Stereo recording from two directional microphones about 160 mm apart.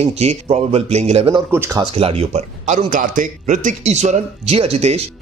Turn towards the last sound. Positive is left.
turn(degrees=-40)  # may be behind; listen again after turning